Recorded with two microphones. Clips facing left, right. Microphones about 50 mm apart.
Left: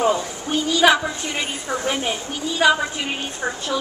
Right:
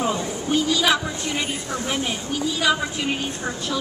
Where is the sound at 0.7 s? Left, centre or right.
Centre.